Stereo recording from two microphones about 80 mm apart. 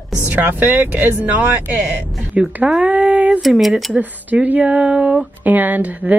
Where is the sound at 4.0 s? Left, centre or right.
Right.